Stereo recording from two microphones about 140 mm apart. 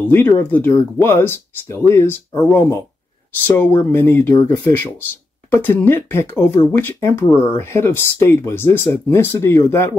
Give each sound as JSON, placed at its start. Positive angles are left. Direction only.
{"t": 0.1, "sound": "speech", "side_deg": 15}